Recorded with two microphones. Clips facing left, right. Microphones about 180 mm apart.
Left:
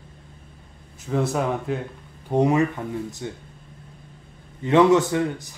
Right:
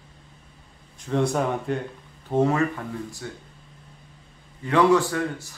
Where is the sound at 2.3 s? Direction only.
15° left (ahead or behind).